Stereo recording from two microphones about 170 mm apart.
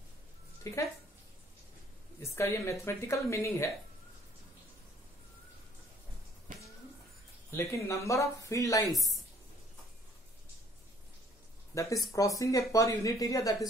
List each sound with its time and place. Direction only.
0.7 s speech: 15° left (ahead or behind)
2.1 s speech: 15° left (ahead or behind)
6.5 s a sound: 50° right (ahead or behind)
7.5 s speech: 15° left (ahead or behind)
11.7 s speech: 20° left (ahead or behind)